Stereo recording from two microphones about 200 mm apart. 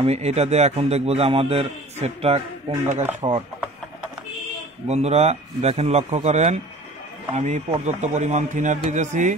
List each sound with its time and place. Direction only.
0.0 s a man's voice: 30° right (ahead or behind)
4.8 s a man's voice: 35° right (ahead or behind)